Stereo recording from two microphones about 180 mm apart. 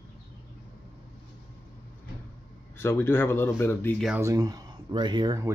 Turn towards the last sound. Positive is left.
turn(degrees=-25)  # may be behind; listen again after turning